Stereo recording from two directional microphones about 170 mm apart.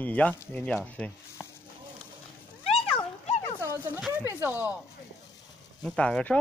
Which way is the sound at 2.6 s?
35° left (ahead or behind).